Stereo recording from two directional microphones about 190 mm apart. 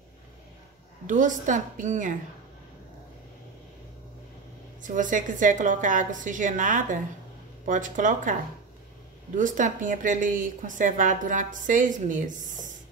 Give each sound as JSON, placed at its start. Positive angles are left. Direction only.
{"t": 1.0, "sound": "a woman's voice", "side_deg": -40}
{"t": 4.8, "sound": "a woman's voice", "side_deg": -45}